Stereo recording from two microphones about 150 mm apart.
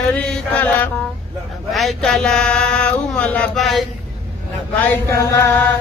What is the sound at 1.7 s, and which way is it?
Speech, centre (ahead or behind).